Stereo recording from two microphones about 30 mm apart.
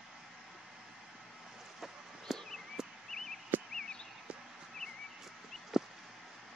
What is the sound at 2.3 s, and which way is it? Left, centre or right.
Walk, centre.